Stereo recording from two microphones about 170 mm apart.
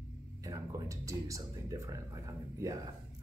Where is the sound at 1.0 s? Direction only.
20° right (ahead or behind).